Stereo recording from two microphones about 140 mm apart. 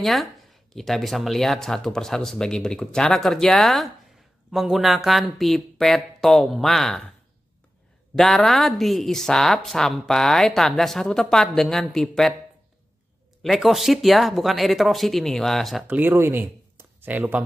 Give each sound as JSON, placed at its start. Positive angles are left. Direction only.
{"t": 0.0, "sound": "a woman's voice", "side_deg": 0}
{"t": 8.2, "sound": "a woman's voice", "side_deg": 0}
{"t": 13.4, "sound": "a woman's voice", "side_deg": 0}
{"t": 15.9, "sound": "speech", "side_deg": -15}